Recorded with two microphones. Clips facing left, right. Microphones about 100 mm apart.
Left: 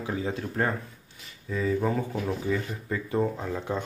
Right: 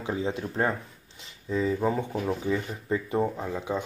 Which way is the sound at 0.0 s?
20° right (ahead or behind).